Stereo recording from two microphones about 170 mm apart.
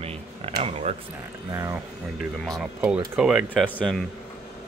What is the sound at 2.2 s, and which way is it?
Speech, centre (ahead or behind).